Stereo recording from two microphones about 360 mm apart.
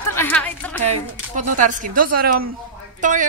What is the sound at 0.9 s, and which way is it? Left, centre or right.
A man's voice, right.